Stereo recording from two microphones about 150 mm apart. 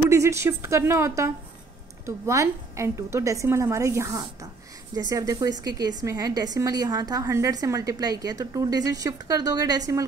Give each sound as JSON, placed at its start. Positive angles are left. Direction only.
{"t": 0.1, "sound": "a woman's voice", "side_deg": -20}